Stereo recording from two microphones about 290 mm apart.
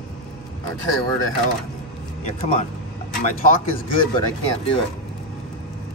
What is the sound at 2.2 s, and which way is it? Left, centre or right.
Speech, left.